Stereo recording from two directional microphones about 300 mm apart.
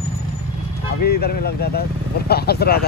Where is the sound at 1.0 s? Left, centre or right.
Left.